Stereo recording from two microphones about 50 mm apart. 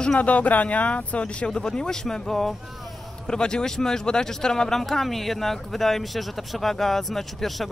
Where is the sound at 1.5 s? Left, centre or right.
Centre.